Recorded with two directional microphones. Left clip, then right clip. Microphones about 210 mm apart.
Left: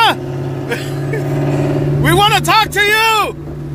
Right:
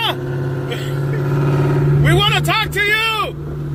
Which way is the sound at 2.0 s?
30° left (ahead or behind).